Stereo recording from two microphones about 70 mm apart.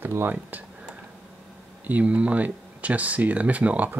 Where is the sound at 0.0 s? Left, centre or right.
Right.